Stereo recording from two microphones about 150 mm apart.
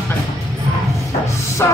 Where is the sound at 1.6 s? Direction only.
20° left (ahead or behind).